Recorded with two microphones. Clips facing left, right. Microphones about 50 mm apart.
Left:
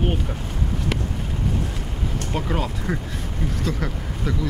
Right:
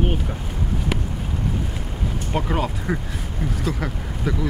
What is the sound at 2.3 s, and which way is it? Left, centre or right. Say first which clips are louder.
Speech: right 3 dB; centre.